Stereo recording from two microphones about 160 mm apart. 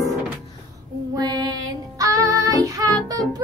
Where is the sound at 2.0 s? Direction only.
20° right (ahead or behind).